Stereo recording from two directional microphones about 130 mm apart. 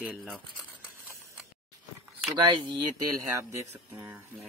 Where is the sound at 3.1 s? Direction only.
25° right (ahead or behind).